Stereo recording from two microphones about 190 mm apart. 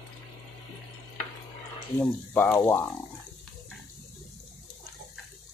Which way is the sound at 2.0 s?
5° left (ahead or behind).